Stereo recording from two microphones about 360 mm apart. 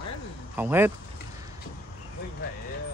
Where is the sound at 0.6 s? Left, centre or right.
Centre.